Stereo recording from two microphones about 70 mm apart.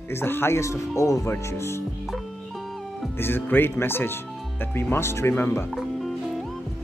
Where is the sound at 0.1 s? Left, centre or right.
Left.